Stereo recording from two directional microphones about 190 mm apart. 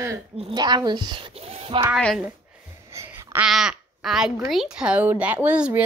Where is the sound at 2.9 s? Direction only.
15° right (ahead or behind).